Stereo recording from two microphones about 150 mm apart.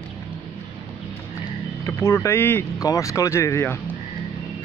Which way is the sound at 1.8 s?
20° left (ahead or behind).